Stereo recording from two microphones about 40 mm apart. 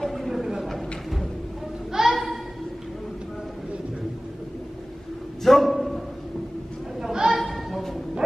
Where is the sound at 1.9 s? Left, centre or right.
Centre.